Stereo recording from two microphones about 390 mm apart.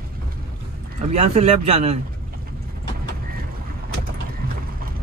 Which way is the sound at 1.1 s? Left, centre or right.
Centre.